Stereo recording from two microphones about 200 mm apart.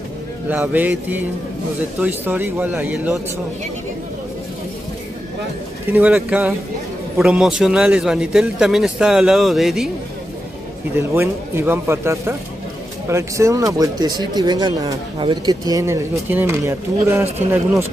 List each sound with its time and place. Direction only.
0.5 s speech: 10° right (ahead or behind)
5.9 s a man's voice: 10° right (ahead or behind)
11.0 s speech: 10° right (ahead or behind)